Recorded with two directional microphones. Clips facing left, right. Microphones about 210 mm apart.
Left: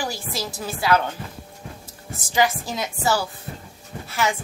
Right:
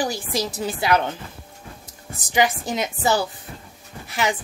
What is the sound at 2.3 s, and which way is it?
A woman's voice, 20° right (ahead or behind).